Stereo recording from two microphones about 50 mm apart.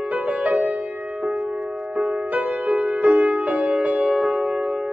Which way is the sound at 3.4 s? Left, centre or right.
Right.